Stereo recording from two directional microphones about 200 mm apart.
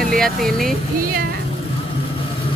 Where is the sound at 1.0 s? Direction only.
45° right (ahead or behind).